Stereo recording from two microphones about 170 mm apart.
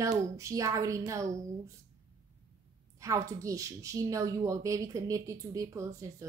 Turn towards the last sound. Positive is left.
turn(degrees=-20)  # may be behind; listen again after turning